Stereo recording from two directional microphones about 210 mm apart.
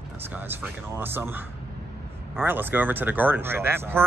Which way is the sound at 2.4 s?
10° right (ahead or behind).